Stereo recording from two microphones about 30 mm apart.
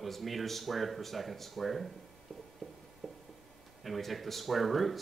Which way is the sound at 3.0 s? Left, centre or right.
Centre.